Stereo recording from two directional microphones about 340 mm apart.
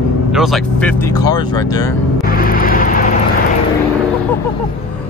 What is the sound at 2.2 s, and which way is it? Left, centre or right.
Vehicle, left.